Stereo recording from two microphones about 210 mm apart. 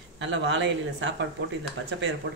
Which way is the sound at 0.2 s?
60° right (ahead or behind).